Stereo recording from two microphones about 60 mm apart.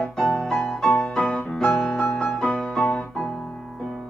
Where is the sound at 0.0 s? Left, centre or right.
Centre.